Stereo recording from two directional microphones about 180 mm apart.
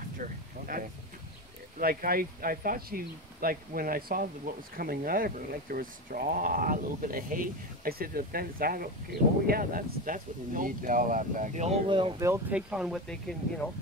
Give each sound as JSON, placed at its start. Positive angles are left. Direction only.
{"t": 0.2, "sound": "speech", "side_deg": -50}
{"t": 11.9, "sound": "speech", "side_deg": -30}
{"t": 12.2, "sound": "speech", "side_deg": -10}